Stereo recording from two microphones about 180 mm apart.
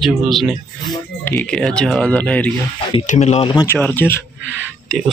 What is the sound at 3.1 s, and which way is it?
Speech, 40° left (ahead or behind).